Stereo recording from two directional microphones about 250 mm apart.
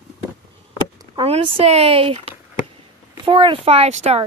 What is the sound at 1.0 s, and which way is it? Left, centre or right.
A child's voice, right.